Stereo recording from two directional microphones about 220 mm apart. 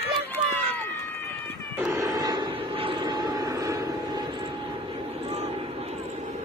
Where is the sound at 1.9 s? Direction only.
15° right (ahead or behind).